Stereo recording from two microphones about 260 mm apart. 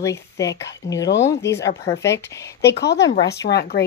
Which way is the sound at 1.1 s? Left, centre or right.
Left.